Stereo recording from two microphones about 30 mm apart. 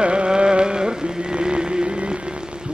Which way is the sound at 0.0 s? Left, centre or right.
Right.